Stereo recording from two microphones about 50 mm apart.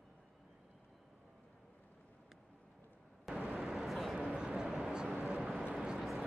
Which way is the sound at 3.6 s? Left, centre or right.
Centre.